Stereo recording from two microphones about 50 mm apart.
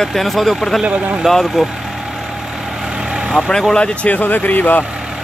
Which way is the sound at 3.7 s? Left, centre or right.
Left.